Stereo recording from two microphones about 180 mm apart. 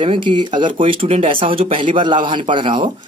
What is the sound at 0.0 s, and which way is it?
A man's voice, 30° right (ahead or behind).